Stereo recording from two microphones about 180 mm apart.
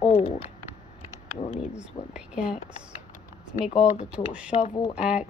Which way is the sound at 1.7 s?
5° right (ahead or behind).